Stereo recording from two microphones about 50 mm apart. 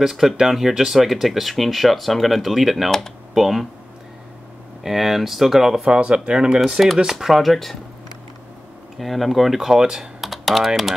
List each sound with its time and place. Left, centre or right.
0.0 s speech: centre
4.8 s speech: centre
5.8 s speech: right; by 7.7 s centre
8.9 s speech: centre